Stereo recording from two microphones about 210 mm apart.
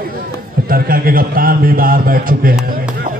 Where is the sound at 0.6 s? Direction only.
45° right (ahead or behind).